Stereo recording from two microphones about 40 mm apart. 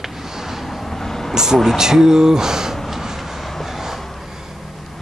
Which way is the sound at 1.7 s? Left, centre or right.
Centre.